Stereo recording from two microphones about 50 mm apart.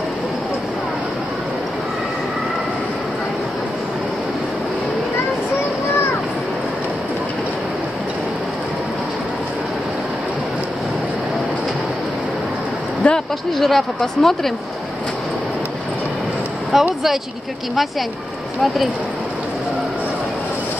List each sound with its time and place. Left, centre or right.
13.0 s a sound: left
13.6 s speech: centre
16.7 s speech: centre